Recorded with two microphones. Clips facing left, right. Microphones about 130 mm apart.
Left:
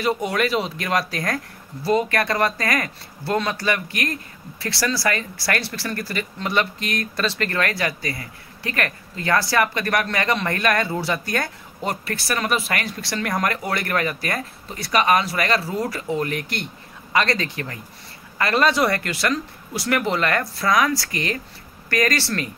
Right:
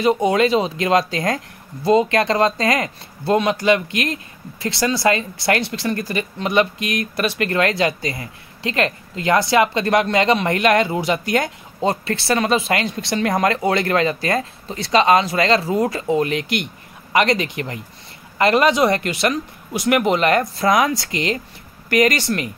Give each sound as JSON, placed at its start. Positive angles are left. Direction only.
{"t": 0.0, "sound": "speech", "side_deg": -20}